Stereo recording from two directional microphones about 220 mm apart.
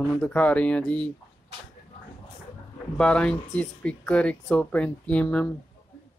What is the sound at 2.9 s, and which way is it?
Speech, 5° left (ahead or behind).